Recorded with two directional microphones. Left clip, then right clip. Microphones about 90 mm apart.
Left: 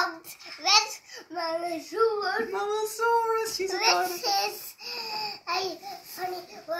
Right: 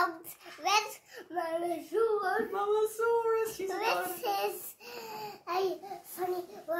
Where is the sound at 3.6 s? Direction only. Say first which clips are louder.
Left 7 dB; 20° right (ahead or behind).